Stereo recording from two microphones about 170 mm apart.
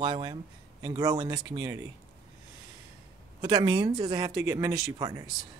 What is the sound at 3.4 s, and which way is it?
Speech, 25° right (ahead or behind).